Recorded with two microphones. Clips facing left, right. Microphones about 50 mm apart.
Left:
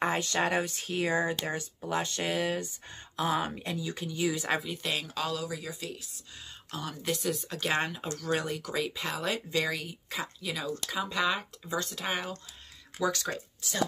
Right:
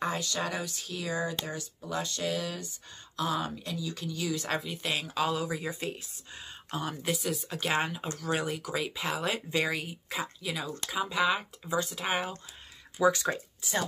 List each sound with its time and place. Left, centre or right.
0.0 s speech: left
4.5 s speech: centre
5.3 s speech: right
6.7 s speech: centre
7.2 s speech: centre
9.5 s speech: centre